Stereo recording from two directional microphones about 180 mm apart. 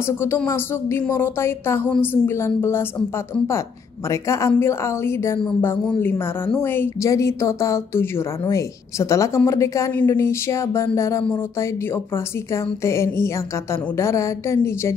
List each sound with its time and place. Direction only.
0.2 s speech: 15° left (ahead or behind)
4.1 s speech: 15° left (ahead or behind)
12.8 s speech: 15° left (ahead or behind)